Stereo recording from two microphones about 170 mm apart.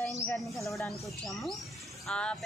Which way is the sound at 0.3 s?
Centre (ahead or behind).